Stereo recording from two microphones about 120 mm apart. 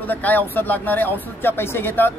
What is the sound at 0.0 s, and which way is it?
Speech, 15° left (ahead or behind).